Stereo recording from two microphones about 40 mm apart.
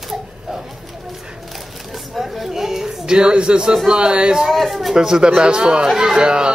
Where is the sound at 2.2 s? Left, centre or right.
Centre.